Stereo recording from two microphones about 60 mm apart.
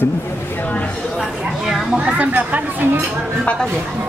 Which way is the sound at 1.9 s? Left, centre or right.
Right.